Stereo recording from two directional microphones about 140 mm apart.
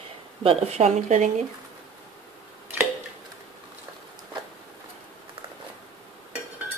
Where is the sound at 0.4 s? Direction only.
45° right (ahead or behind).